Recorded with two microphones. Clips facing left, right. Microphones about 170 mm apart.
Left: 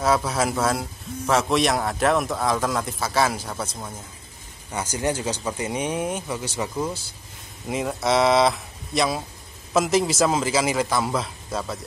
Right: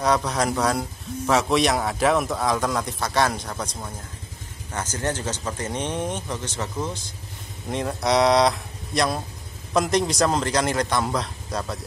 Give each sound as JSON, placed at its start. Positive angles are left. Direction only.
{"t": 0.0, "sound": "a man's voice", "side_deg": 5}